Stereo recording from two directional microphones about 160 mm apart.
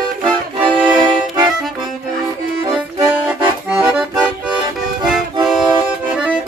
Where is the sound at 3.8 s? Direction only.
5° right (ahead or behind).